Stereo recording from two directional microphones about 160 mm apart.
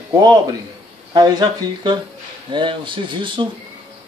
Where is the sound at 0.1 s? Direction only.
25° right (ahead or behind).